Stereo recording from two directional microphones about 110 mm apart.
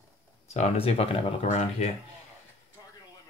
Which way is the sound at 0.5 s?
75° left (ahead or behind).